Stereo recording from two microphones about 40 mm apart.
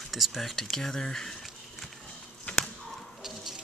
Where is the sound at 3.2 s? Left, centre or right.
Centre.